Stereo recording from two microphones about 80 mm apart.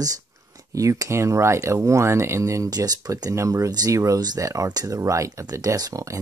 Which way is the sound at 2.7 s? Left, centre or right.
Right.